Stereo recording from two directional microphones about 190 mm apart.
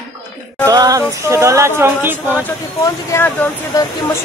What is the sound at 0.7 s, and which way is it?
Speech, 20° right (ahead or behind).